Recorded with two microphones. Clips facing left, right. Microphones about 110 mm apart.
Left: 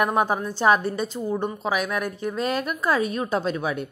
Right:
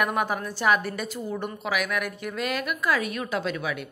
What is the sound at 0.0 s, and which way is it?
A woman's voice, 30° left (ahead or behind).